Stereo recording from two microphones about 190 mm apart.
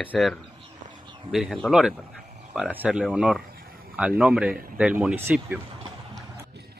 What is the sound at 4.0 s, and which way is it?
Speech, 5° right (ahead or behind).